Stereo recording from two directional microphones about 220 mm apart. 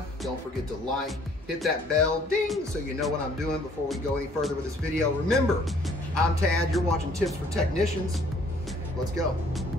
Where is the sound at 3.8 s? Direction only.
Centre (ahead or behind).